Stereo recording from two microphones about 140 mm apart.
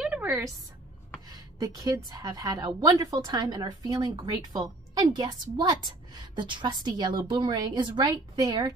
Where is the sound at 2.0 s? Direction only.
30° right (ahead or behind).